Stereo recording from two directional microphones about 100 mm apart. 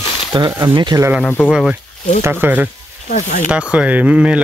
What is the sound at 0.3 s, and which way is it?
Speech, 50° right (ahead or behind).